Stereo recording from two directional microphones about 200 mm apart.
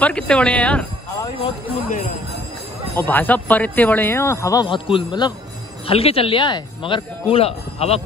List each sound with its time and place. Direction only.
0.0 s speech: 5° left (ahead or behind)
3.0 s speech: 10° left (ahead or behind); by 8.0 s 30° left (ahead or behind)